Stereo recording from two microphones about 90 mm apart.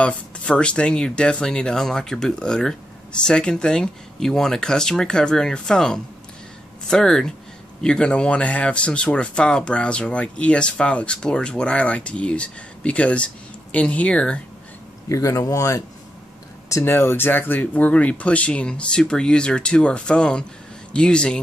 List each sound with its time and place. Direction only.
0.0 s speech: 10° left (ahead or behind)
15.0 s speech: 35° left (ahead or behind); by 21.4 s 10° left (ahead or behind)